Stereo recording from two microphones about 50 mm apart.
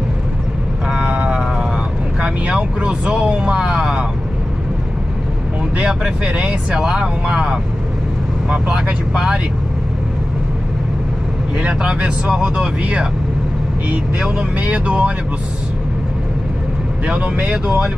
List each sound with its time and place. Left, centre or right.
0.8 s vehicle: right
5.8 s speech: right
8.7 s speech: centre
11.6 s speech: right
14.6 s speech: right
17.0 s speech: right